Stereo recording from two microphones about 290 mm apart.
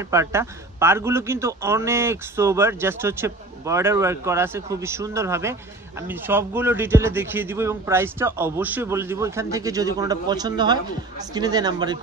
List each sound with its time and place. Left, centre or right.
0.1 s speech: centre